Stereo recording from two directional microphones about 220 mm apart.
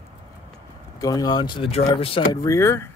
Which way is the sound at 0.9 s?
15° left (ahead or behind).